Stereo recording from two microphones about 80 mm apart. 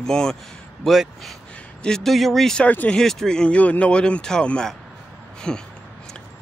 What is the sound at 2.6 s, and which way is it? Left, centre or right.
Speech, centre.